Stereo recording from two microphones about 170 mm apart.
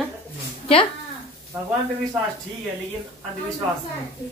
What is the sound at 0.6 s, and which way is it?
Speech, 30° left (ahead or behind).